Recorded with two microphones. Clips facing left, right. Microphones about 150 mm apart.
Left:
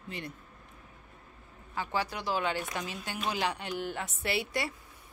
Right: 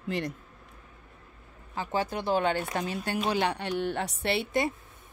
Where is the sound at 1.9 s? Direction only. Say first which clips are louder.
Right 5 dB; 50° right (ahead or behind).